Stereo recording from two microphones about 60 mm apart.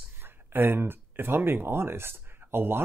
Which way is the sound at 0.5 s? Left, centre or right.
Right.